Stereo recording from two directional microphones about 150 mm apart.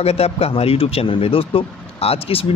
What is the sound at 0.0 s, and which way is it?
Speech, 40° left (ahead or behind).